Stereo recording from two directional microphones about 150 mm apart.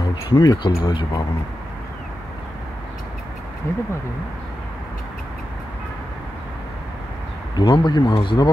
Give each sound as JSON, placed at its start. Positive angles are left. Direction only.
{"t": 0.0, "sound": "speech", "side_deg": 25}
{"t": 3.7, "sound": "speech", "side_deg": 15}
{"t": 7.5, "sound": "speech", "side_deg": 30}